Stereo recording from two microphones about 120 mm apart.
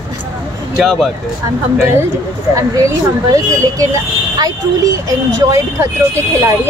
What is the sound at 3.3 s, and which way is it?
Speech, 30° right (ahead or behind).